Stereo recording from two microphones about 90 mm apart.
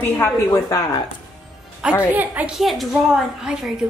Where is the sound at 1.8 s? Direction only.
10° right (ahead or behind).